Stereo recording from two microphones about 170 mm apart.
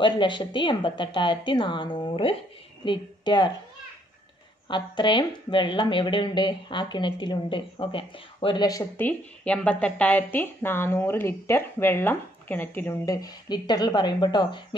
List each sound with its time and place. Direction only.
0.0 s a woman's voice: 30° left (ahead or behind)
4.6 s speech: 25° left (ahead or behind)